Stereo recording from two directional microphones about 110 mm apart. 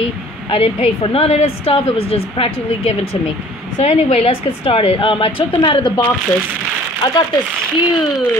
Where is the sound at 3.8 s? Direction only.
75° left (ahead or behind); by 6.0 s 50° left (ahead or behind).